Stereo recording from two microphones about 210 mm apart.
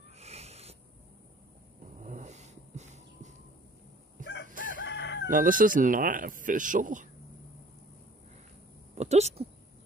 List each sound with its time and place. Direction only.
0.2 s wheeze: 30° right (ahead or behind)
2.0 s vehicle: 35° right (ahead or behind)
4.5 s crowing: 40° right (ahead or behind)
4.8 s crowing: 55° left (ahead or behind)
5.3 s speech: 40° right (ahead or behind)
8.9 s speech: 30° right (ahead or behind)